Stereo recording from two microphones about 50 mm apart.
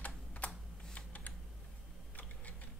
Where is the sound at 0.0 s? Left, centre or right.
Left.